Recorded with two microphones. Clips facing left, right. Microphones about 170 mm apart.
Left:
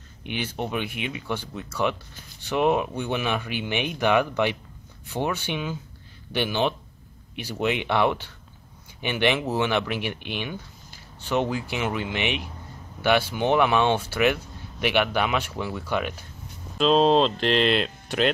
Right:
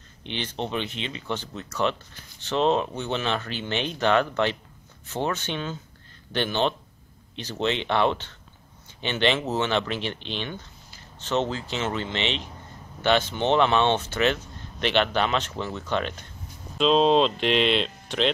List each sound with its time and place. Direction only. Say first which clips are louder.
0.2 s speech: left 1 dB; 10° left (ahead or behind)